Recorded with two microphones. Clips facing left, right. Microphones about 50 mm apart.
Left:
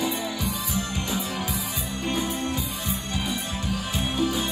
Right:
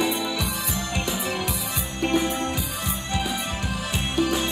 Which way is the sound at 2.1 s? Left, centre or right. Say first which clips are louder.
Right 6 dB; right.